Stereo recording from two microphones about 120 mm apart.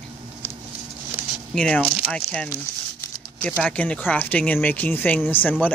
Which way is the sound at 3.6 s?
10° left (ahead or behind).